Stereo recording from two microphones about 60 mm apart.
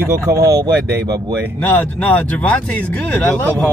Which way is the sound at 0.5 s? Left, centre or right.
Right.